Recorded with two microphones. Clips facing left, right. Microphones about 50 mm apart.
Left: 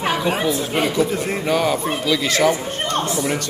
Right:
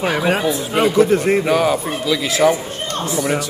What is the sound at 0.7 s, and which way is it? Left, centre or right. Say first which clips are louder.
Speech: right 5 dB; right.